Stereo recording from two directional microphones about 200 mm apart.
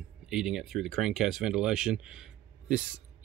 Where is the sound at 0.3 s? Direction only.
Centre (ahead or behind).